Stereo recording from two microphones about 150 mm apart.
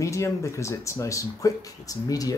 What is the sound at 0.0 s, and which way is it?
Speech, 20° left (ahead or behind).